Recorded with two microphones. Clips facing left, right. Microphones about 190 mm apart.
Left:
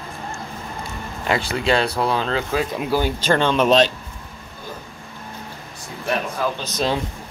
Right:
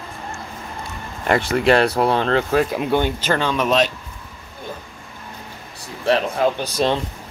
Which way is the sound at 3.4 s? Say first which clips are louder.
Left 3 dB; 25° left (ahead or behind).